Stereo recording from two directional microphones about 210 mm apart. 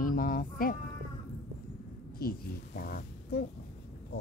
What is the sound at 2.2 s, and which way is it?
Speech, 45° left (ahead or behind).